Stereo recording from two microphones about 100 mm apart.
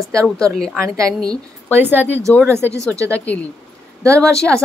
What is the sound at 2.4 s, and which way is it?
Speech, 25° right (ahead or behind).